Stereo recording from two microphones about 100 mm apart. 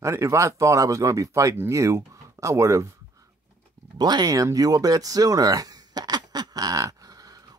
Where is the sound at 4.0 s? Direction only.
45° right (ahead or behind).